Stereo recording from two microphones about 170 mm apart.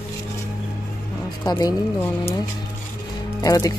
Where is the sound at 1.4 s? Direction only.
20° left (ahead or behind).